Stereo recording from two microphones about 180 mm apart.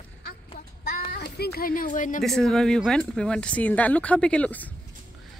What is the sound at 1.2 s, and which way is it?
A woman's voice, 60° left (ahead or behind).